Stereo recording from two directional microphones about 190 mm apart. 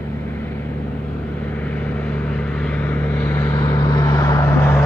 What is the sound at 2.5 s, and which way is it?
Vehicle, 5° left (ahead or behind).